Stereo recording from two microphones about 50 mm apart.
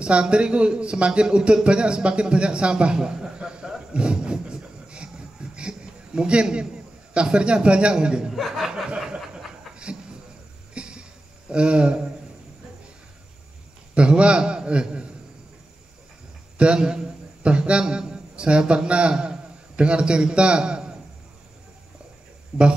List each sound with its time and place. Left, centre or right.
0.0 s a man's voice: centre
3.9 s a sound: centre
7.2 s a man's voice: right
8.3 s speech: centre
10.7 s cough: centre
11.5 s a man's voice: right
13.9 s a man's voice: right
16.5 s a man's voice: right
22.5 s speech: centre